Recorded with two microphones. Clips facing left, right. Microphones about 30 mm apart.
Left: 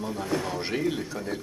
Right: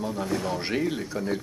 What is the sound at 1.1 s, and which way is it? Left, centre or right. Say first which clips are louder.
Speech: right 4 dB; centre.